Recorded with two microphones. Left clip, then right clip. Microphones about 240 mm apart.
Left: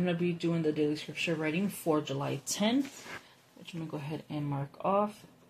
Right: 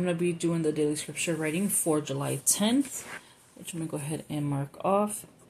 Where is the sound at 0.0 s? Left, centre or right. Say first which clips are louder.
Right 4 dB; right.